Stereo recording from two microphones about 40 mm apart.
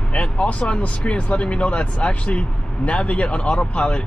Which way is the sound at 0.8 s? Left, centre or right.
Left.